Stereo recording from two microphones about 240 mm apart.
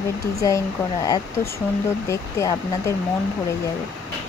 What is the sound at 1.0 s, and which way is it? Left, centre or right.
Speech, centre.